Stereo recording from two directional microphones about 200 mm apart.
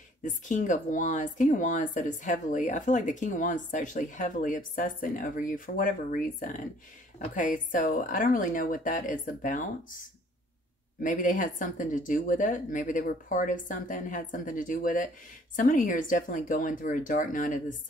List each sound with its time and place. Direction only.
0.2 s speech: 40° left (ahead or behind)
7.3 s speech: 40° left (ahead or behind)
11.0 s speech: 40° left (ahead or behind)